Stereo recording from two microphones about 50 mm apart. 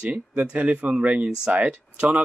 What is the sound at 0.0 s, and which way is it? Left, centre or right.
Speech, right.